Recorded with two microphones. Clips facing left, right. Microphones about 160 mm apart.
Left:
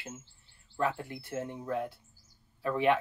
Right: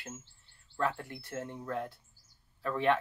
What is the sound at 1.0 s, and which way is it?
Speech, 25° left (ahead or behind).